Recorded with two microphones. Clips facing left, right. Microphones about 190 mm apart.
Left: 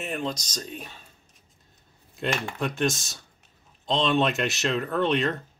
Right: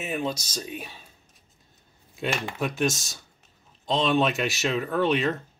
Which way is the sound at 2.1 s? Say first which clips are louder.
Even; 5° right (ahead or behind).